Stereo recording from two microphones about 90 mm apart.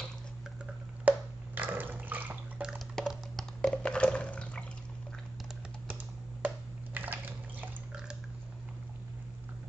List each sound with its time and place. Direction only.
1.0 s bathtub: 20° right (ahead or behind)
3.0 s a sound: centre (ahead or behind)
3.7 s water: 10° left (ahead or behind)
6.4 s drip: 20° right (ahead or behind)